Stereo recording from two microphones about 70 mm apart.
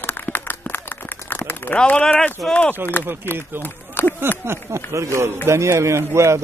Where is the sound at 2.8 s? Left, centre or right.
Right.